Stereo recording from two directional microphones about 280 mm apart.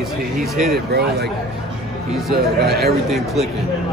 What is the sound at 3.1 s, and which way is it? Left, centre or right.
Speech, centre.